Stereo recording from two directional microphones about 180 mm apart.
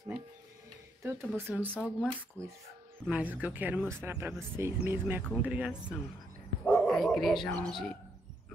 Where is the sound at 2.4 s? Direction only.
5° left (ahead or behind).